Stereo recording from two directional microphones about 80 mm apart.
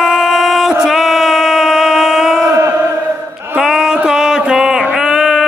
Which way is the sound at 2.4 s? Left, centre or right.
Right.